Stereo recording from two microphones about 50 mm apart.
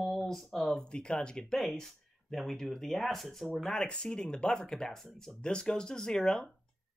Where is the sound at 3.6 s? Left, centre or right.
Centre.